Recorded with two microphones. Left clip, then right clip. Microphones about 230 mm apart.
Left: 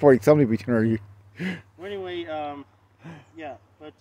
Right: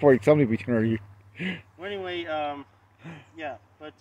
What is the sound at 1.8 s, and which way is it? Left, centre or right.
Speech, centre.